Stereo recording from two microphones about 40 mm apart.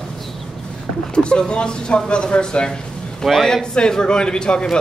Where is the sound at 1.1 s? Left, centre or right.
Left.